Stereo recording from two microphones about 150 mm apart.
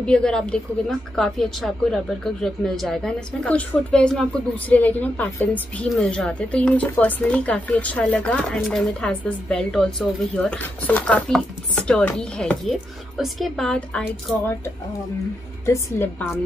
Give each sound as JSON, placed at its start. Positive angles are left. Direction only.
{"t": 0.0, "sound": "a woman's voice", "side_deg": 5}